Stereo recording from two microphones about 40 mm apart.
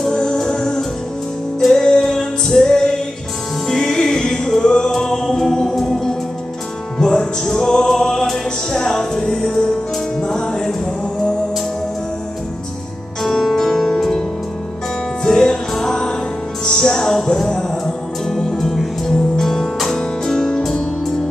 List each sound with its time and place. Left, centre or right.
0.1 s music: centre
13.2 s music: centre
15.2 s music: centre